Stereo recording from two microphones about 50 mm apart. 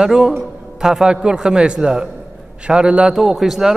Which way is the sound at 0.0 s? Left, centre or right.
Centre.